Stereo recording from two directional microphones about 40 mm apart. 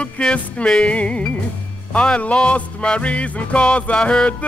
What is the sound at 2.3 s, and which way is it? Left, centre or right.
Music, left.